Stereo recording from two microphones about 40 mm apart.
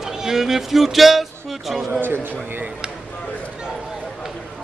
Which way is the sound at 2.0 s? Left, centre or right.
Right.